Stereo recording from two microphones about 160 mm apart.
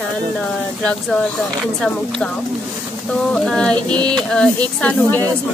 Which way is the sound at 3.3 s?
5° left (ahead or behind).